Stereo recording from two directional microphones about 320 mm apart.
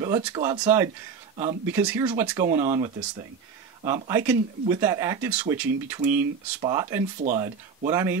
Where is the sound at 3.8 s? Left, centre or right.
Centre.